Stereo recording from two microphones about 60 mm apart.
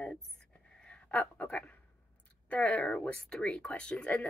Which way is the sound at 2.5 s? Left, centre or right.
Left.